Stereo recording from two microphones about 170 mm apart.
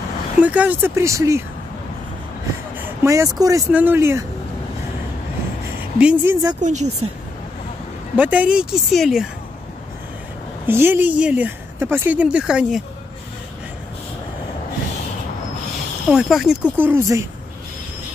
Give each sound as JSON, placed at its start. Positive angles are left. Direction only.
{"t": 0.4, "sound": "speech", "side_deg": -10}
{"t": 2.8, "sound": "speech", "side_deg": -15}
{"t": 5.9, "sound": "speech", "side_deg": -5}
{"t": 6.6, "sound": "speech", "side_deg": -45}
{"t": 8.2, "sound": "a woman's voice", "side_deg": -10}
{"t": 10.7, "sound": "speech", "side_deg": -15}
{"t": 16.1, "sound": "speech", "side_deg": 0}